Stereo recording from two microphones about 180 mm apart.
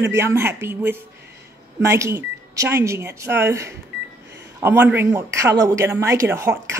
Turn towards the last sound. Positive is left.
turn(degrees=-15)  # may be behind; listen again after turning